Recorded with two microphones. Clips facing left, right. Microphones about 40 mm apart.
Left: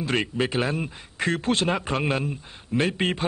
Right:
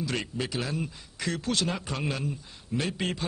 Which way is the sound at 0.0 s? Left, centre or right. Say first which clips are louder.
Left 7 dB; left.